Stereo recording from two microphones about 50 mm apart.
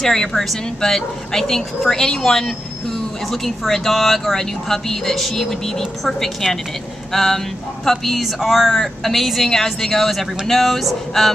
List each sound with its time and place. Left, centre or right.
0.0 s a woman's voice: centre